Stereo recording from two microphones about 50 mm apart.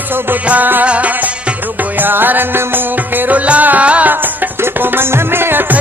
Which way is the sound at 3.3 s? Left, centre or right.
Right.